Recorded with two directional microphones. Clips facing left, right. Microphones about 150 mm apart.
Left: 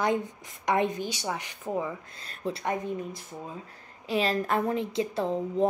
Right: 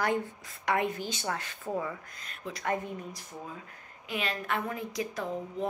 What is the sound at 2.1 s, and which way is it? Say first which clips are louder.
A woman's voice: left 7 dB; 30° left (ahead or behind).